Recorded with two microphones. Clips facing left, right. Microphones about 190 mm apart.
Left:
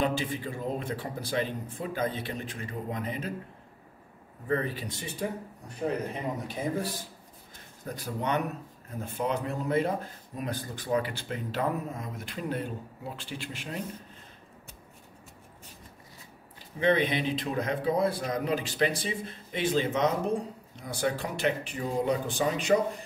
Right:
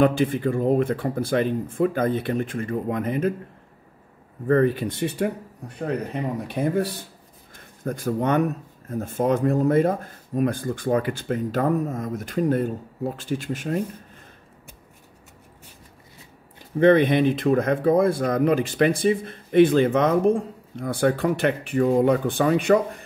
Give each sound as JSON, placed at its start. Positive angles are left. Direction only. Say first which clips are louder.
{"t": 0.0, "sound": "speech", "louder": "right 10 dB", "side_deg": -55}
{"t": 4.5, "sound": "speech", "louder": "right 11 dB", "side_deg": -55}
{"t": 6.4, "sound": "speech", "louder": "right 11 dB", "side_deg": -65}
{"t": 7.8, "sound": "speech", "louder": "right 9 dB", "side_deg": -50}
{"t": 16.8, "sound": "speech", "louder": "right 9 dB", "side_deg": -50}